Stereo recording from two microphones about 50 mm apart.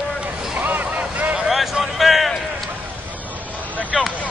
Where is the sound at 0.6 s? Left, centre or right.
Right.